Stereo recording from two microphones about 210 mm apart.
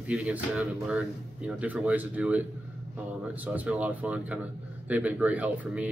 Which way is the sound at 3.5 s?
5° right (ahead or behind).